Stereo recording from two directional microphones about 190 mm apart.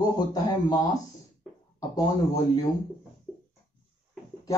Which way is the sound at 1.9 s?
20° left (ahead or behind).